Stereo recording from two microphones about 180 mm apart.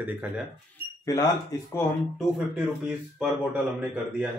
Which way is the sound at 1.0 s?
20° left (ahead or behind).